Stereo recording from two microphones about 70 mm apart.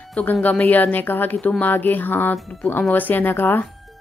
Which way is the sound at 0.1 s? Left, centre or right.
Left.